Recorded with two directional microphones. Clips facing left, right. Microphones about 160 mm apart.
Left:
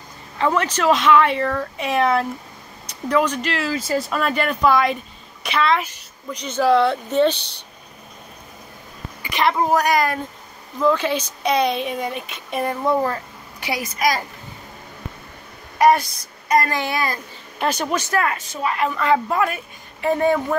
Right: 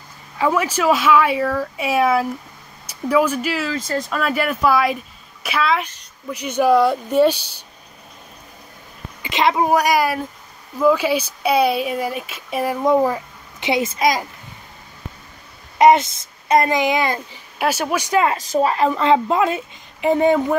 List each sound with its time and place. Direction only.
0.4 s speech: 10° right (ahead or behind)
3.7 s a woman's voice: 5° left (ahead or behind)
9.2 s speech: 20° right (ahead or behind); by 12.7 s 5° right (ahead or behind)
12.8 s a sound: 15° right (ahead or behind)
13.7 s a woman's voice: 25° right (ahead or behind)
15.8 s a woman's voice: 20° right (ahead or behind)
17.6 s speech: 10° right (ahead or behind)
18.3 s a woman's voice: 35° right (ahead or behind); by 20.5 s 20° right (ahead or behind)